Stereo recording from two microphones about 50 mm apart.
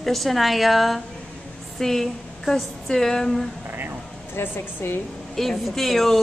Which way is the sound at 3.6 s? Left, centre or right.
Right.